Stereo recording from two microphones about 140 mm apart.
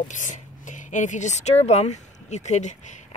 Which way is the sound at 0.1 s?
65° left (ahead or behind).